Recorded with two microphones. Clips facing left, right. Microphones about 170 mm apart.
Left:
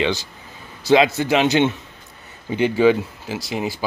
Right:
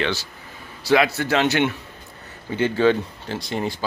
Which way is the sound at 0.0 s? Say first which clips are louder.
Left 3 dB; 15° left (ahead or behind).